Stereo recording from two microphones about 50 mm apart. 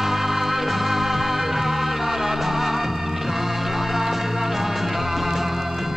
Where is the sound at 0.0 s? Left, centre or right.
Centre.